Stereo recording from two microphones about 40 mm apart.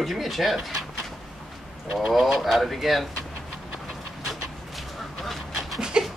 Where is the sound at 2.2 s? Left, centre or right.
Centre.